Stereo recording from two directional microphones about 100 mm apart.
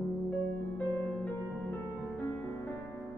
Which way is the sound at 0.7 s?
20° left (ahead or behind).